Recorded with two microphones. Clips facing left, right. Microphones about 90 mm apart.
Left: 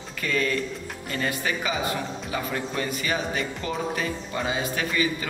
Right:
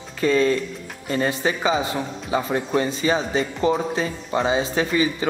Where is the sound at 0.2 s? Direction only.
25° right (ahead or behind).